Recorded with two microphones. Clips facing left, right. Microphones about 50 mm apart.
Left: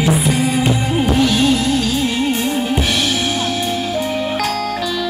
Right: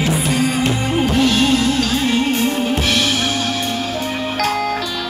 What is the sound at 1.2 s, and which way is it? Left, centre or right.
Music, centre.